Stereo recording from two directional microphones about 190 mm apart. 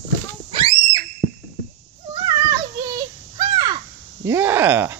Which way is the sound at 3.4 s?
25° right (ahead or behind).